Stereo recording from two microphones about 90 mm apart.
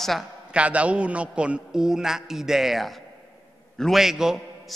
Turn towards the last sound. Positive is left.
turn(degrees=-5)  # may be behind; listen again after turning